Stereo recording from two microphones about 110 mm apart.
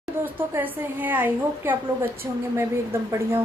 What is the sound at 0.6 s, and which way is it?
A woman's voice, 15° right (ahead or behind).